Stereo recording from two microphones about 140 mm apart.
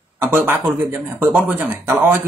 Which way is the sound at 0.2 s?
15° right (ahead or behind).